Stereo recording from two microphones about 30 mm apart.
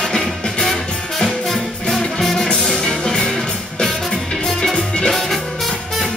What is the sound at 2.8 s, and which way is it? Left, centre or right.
Music, left.